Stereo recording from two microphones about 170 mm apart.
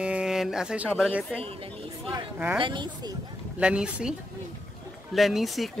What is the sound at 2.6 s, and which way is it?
Speech, 25° right (ahead or behind).